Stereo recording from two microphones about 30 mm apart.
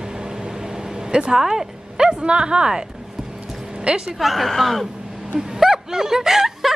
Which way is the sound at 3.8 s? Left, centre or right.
Right.